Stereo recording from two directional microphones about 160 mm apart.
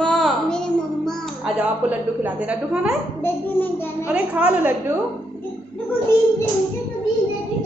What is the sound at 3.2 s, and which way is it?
Speech, 15° left (ahead or behind).